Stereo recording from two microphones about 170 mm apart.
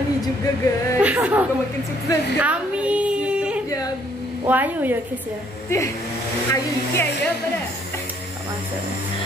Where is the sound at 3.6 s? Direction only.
20° left (ahead or behind).